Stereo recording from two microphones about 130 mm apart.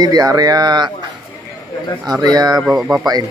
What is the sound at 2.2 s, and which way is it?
Speech, 30° right (ahead or behind).